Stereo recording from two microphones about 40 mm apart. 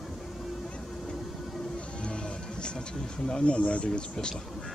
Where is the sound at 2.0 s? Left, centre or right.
Left.